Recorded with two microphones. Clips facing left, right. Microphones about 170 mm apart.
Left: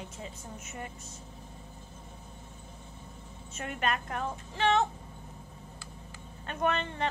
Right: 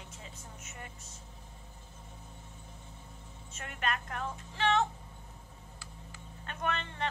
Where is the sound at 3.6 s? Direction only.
20° left (ahead or behind).